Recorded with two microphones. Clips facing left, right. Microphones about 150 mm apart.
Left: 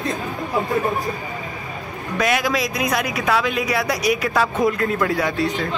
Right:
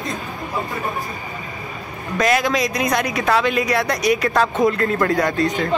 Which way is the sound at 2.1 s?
5° left (ahead or behind).